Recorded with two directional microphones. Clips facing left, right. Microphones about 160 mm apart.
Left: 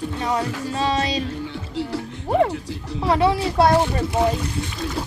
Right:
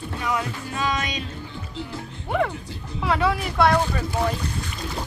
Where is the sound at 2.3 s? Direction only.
35° left (ahead or behind).